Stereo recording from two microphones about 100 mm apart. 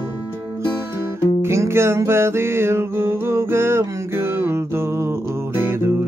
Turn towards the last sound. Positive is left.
turn(degrees=-25)  # may be behind; listen again after turning